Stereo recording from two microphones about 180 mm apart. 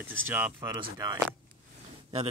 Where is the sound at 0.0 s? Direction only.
10° right (ahead or behind).